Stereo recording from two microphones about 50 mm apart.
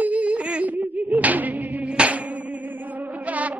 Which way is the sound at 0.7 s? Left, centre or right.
Right.